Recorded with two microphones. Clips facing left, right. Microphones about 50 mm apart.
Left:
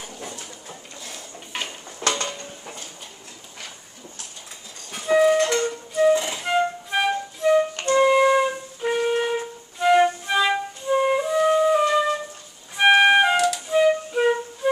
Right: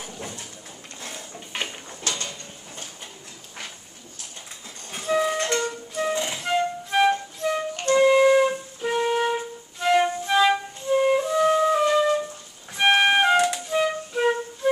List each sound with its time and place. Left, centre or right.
2.0 s a sound: left
5.0 s flute: centre
6.4 s music: centre
7.9 s flute: centre
12.7 s music: centre
13.7 s flute: centre